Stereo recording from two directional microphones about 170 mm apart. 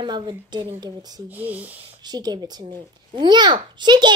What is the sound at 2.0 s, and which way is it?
A child's voice, 25° right (ahead or behind).